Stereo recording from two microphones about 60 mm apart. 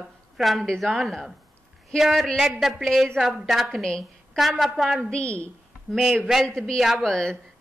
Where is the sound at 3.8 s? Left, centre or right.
Centre.